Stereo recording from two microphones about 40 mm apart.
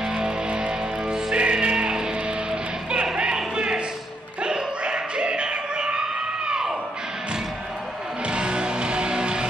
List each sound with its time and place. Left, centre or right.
0.0 s music: centre
3.5 s a sound: right
8.3 s music: right